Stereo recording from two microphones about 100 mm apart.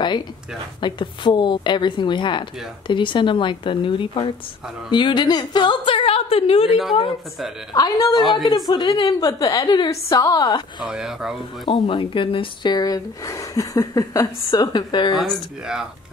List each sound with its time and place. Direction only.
0.7 s a woman's voice: 50° left (ahead or behind); by 6.8 s 80° left
7.7 s speech: 40° left (ahead or behind)
8.2 s speech: centre (ahead or behind)
8.6 s a woman's voice: 50° left (ahead or behind)
9.2 s speech: 35° left (ahead or behind)
10.8 s speech: 5° right (ahead or behind)
11.6 s speech: 50° left (ahead or behind)
12.7 s speech: 40° left (ahead or behind)
15.1 s speech: 5° right (ahead or behind)